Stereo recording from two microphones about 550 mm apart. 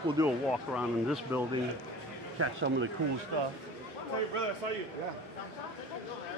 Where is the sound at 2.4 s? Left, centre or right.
Right.